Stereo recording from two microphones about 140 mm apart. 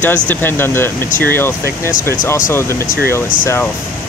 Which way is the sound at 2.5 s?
20° left (ahead or behind).